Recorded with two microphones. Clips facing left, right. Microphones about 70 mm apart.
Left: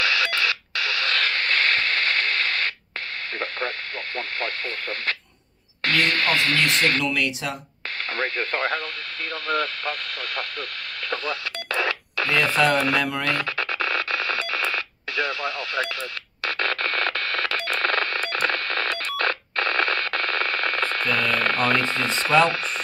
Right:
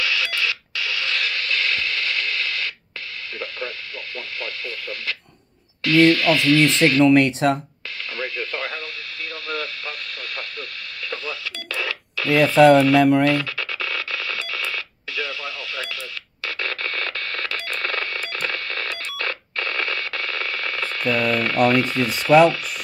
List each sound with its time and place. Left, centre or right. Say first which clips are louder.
0.0 s radio: left 1 dB; left
4.4 s speech: left 1 dB; left
7.0 s speech: right 10 dB; right
8.2 s radio: left 3 dB; left
11.7 s telephone dialing: left 3 dB; left
12.5 s speech: right 10 dB; right
13.3 s radio: right 2 dB; left
16.4 s radio: left 3 dB; left
22.5 s speech: even; left